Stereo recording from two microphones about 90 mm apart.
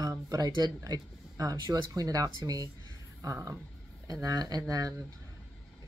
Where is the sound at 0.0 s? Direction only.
40° right (ahead or behind).